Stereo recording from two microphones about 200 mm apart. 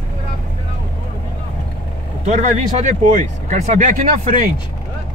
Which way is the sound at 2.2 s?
35° right (ahead or behind).